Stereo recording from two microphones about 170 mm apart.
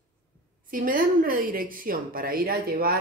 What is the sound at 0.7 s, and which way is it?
A woman's voice, 55° right (ahead or behind).